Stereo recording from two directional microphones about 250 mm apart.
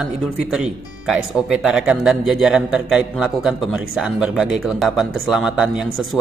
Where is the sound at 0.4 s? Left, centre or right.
Centre.